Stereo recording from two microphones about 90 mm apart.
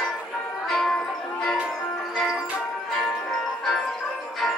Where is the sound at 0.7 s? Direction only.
5° left (ahead or behind).